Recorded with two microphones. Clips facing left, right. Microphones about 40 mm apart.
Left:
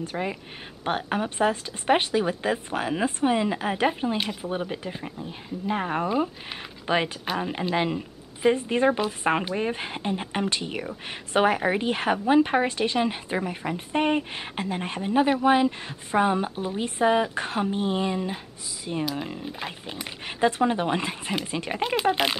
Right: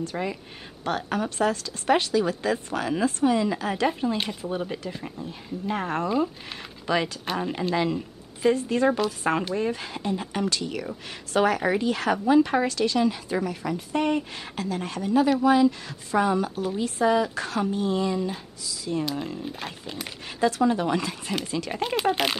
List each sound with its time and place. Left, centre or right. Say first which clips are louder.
0.0 s speech: even; left
6.9 s speech: even; left
7.2 s speech: even; centre
7.5 s speech: right 1 dB; left
21.8 s speech: left 1 dB; centre